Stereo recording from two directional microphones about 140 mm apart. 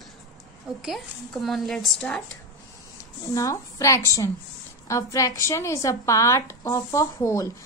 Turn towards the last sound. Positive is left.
turn(degrees=20)  # may be behind; listen again after turning